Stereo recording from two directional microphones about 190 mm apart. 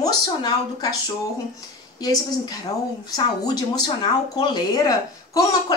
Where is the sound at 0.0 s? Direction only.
20° left (ahead or behind).